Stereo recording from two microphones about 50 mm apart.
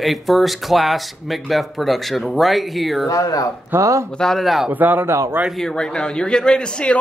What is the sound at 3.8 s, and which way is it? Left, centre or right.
Speech, right.